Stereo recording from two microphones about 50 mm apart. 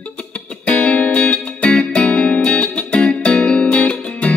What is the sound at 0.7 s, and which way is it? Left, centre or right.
Music, left.